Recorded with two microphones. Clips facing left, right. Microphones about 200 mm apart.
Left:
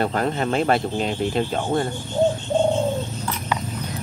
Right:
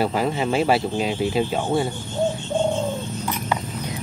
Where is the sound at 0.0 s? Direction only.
5° right (ahead or behind).